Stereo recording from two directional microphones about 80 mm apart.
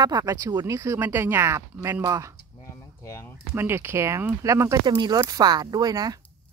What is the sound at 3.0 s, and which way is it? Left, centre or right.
Speech, left.